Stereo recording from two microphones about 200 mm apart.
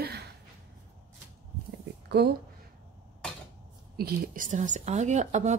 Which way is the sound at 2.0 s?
55° right (ahead or behind).